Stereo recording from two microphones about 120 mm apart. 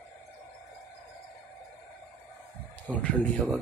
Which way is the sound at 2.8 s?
10° left (ahead or behind).